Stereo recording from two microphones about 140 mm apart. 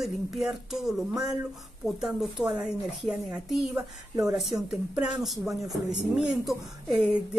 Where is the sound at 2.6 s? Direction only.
5° right (ahead or behind).